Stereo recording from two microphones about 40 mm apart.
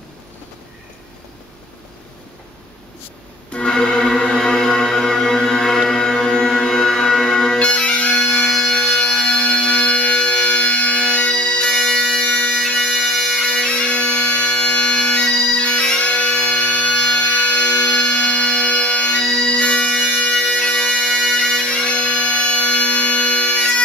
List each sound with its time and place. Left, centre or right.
3.5 s music: centre
7.5 s bagpipes: left
8.5 s music: centre
15.4 s bagpipes: left
17.0 s music: left
19.2 s bagpipes: left